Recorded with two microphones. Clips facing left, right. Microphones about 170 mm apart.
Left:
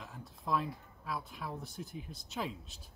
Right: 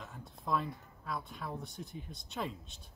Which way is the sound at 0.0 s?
Centre (ahead or behind).